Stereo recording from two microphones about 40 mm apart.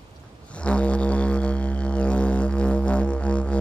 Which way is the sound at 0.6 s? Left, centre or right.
Left.